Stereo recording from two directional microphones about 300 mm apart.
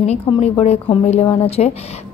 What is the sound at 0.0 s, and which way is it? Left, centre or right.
Speech, left.